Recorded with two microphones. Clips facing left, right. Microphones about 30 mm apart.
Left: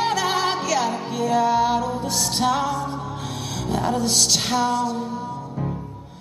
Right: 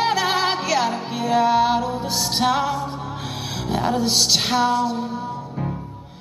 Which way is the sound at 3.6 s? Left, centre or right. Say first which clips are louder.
Right 1 dB; centre.